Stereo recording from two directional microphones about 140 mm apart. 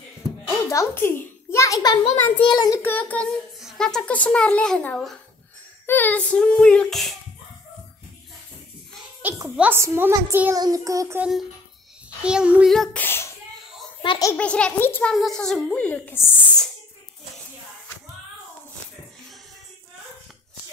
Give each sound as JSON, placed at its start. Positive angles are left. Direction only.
{"t": 0.7, "sound": "a child's voice", "side_deg": 20}
{"t": 2.8, "sound": "child singing", "side_deg": 15}
{"t": 3.5, "sound": "a woman's voice", "side_deg": 0}
{"t": 5.9, "sound": "child singing", "side_deg": 15}
{"t": 9.2, "sound": "a woman's voice", "side_deg": -15}
{"t": 10.5, "sound": "child singing", "side_deg": -25}
{"t": 11.1, "sound": "a woman's voice", "side_deg": -5}
{"t": 12.7, "sound": "a woman's voice", "side_deg": 5}
{"t": 13.0, "sound": "a sound", "side_deg": 15}
{"t": 14.3, "sound": "child singing", "side_deg": 10}
{"t": 15.1, "sound": "a woman's voice", "side_deg": 0}